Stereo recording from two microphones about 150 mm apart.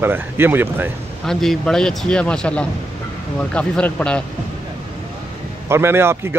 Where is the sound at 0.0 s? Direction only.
15° right (ahead or behind).